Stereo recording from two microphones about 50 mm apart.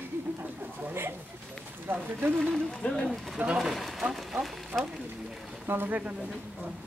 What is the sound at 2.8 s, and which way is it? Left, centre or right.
Speech, left.